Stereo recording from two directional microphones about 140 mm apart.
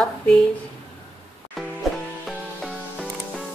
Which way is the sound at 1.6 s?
Centre (ahead or behind).